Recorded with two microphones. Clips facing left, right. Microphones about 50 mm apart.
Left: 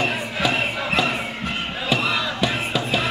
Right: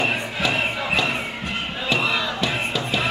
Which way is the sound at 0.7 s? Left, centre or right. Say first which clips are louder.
Left 1 dB; centre.